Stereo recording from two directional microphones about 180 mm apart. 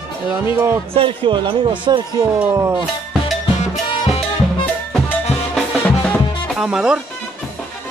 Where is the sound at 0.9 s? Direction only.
25° right (ahead or behind).